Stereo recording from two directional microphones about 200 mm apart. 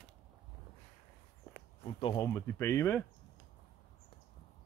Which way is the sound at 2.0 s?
20° left (ahead or behind).